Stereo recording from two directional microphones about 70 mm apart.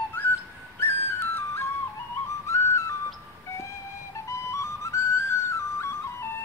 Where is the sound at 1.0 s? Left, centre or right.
Left.